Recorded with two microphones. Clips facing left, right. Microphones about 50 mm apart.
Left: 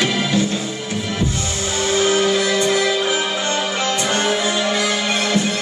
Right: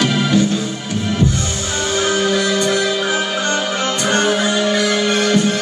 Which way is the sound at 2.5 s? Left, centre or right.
Left.